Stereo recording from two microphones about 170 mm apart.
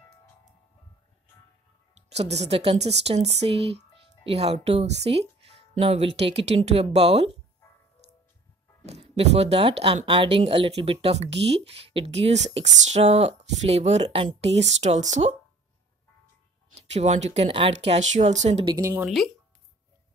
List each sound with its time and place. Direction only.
2.0 s speech: 40° right (ahead or behind)
8.8 s speech: 40° right (ahead or behind)
11.2 s speech: 90° right
11.6 s speech: 35° right (ahead or behind)
16.7 s speech: 40° right (ahead or behind)
18.8 s speech: 15° right (ahead or behind)
19.0 s speech: centre (ahead or behind)